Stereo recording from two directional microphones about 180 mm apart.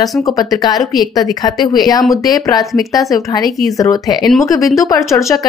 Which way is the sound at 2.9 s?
20° left (ahead or behind).